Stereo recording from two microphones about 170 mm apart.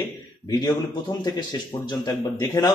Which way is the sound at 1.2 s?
25° left (ahead or behind).